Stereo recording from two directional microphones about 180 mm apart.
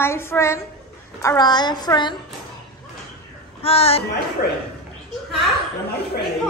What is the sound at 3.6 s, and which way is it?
Speech, 35° left (ahead or behind).